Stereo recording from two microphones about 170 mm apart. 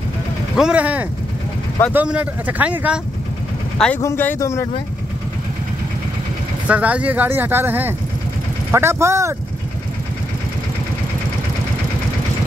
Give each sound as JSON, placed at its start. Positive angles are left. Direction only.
{"t": 0.6, "sound": "speech", "side_deg": -5}
{"t": 3.7, "sound": "speech", "side_deg": 5}
{"t": 6.7, "sound": "speech", "side_deg": -10}